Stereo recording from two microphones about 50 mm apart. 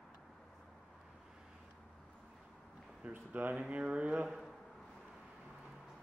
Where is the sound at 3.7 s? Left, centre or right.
Right.